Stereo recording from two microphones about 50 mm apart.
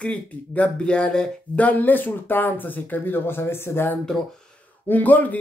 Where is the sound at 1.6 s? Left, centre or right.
Left.